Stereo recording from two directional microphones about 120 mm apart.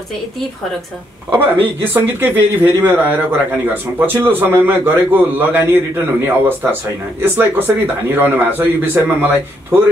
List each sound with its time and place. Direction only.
1.3 s speech: 15° right (ahead or behind)